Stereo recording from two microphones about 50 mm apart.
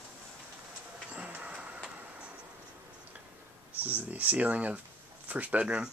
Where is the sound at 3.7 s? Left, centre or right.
Right.